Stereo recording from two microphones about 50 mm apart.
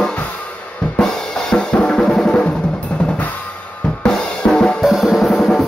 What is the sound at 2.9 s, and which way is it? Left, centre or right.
Drum kit, left.